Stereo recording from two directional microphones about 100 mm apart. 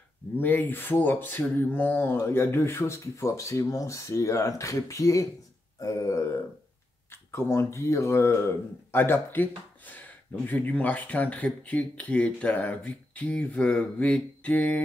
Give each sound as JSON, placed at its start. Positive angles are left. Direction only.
{"t": 0.4, "sound": "speech", "side_deg": 20}